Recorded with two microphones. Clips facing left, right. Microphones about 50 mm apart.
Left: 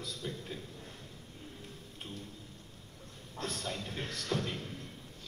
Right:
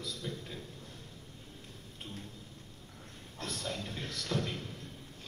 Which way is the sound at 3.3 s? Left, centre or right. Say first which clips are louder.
Left 1 dB; left.